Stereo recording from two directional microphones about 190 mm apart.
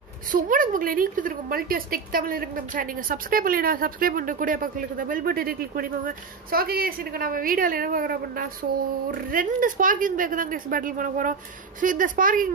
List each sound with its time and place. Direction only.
0.3 s a woman's voice: 45° right (ahead or behind)